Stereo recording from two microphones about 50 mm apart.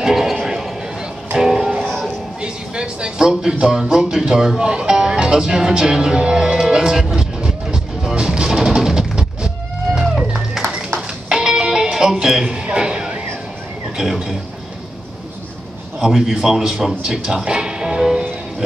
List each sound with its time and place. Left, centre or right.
0.0 s music: centre
2.4 s a sound: centre
3.5 s music: centre
9.9 s a sound: centre
11.2 s music: centre
13.9 s speech: centre
16.1 s speech: centre